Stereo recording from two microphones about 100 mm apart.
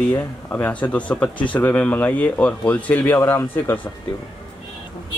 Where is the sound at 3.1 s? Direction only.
25° left (ahead or behind).